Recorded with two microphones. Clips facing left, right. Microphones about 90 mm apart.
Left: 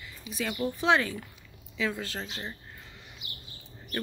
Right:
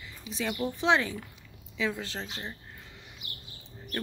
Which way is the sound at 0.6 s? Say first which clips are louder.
Left 1 dB; 20° right (ahead or behind).